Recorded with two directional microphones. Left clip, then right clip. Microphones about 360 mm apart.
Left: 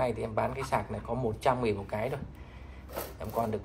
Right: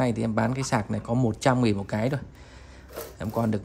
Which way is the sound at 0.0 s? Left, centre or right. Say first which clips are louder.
Right 4 dB; right.